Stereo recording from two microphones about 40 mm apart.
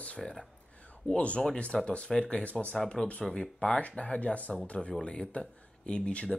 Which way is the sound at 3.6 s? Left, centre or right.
Left.